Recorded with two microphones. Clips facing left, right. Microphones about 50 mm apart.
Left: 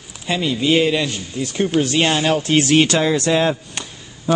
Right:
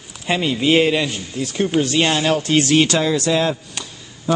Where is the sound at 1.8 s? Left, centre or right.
Centre.